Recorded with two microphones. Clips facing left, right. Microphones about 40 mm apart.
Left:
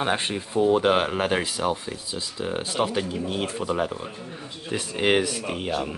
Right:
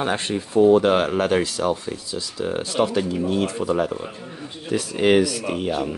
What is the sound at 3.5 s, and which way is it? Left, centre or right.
Speech, centre.